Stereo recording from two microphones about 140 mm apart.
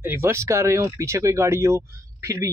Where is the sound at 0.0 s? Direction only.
15° right (ahead or behind).